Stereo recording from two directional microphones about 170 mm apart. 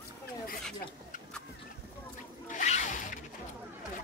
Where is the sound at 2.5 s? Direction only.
45° left (ahead or behind).